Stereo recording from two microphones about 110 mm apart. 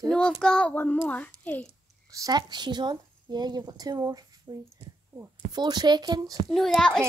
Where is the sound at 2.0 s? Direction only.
35° right (ahead or behind).